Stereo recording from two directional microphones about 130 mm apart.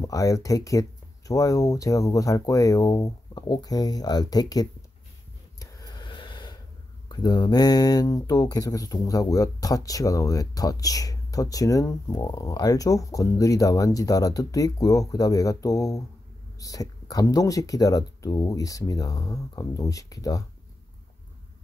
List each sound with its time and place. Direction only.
0.0 s speech: 25° left (ahead or behind)
5.6 s a sound: 30° left (ahead or behind)
7.1 s speech: 35° left (ahead or behind)